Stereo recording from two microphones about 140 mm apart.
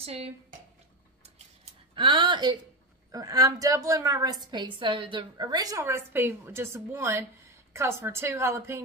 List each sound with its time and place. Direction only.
0.0 s speech: 45° right (ahead or behind)
2.0 s a woman's voice: 35° right (ahead or behind); by 8.8 s 20° right (ahead or behind)